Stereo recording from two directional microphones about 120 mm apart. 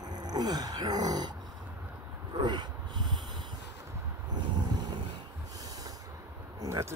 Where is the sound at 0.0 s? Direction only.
35° right (ahead or behind).